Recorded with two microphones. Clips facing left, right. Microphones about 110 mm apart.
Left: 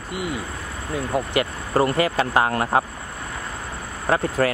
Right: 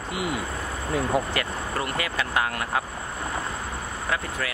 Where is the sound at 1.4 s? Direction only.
20° left (ahead or behind).